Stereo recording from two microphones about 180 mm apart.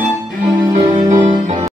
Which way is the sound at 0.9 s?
40° right (ahead or behind).